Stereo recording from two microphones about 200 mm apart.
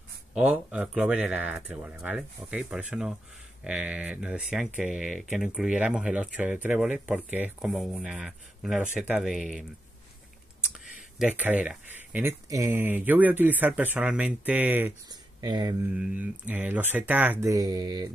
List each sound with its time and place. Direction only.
0.3 s speech: 5° right (ahead or behind)
11.1 s speech: 10° right (ahead or behind)
15.0 s speech: 20° right (ahead or behind)
15.9 s speech: 5° right (ahead or behind)